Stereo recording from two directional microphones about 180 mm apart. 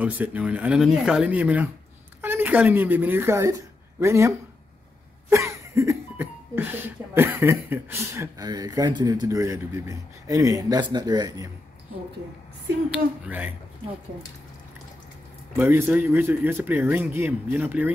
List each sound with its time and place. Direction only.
0.0 s a woman's voice: 10° right (ahead or behind)
5.3 s speech: 15° right (ahead or behind)
12.9 s speech: 5° right (ahead or behind)
15.7 s speech: 10° right (ahead or behind)